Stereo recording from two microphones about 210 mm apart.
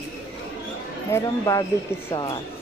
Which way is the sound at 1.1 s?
15° left (ahead or behind).